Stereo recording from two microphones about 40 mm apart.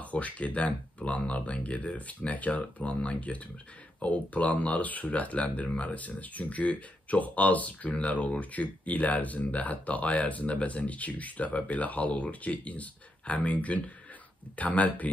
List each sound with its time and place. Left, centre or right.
0.0 s speech: left